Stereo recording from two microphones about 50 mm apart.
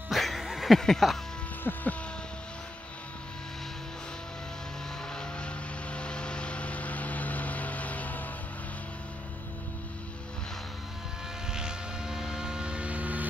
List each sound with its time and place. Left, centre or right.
0.1 s a sound: centre
0.7 s speech: centre
1.6 s speech: left
5.1 s vehicle: centre; by 8.3 s left
11.5 s vehicle: centre; by 13.3 s right